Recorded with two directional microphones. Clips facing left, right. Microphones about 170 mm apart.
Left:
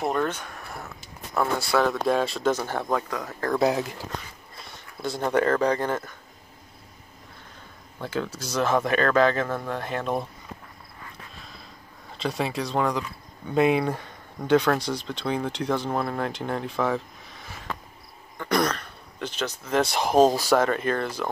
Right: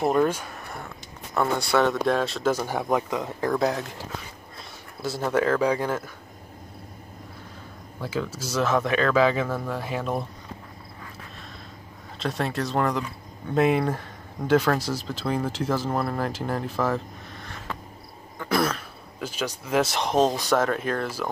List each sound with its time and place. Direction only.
0.0 s speech: 10° right (ahead or behind)
2.5 s speech: 10° right (ahead or behind)
3.5 s speech: 5° left (ahead or behind)
8.0 s speech: 5° right (ahead or behind)
12.2 s speech: centre (ahead or behind)